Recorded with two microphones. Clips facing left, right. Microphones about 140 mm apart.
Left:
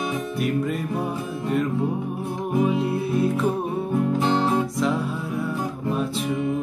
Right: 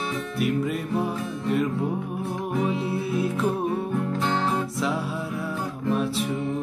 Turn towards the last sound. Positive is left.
turn(degrees=10)  # may be behind; listen again after turning